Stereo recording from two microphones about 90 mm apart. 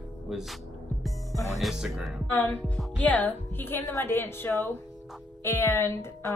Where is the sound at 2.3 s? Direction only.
20° left (ahead or behind).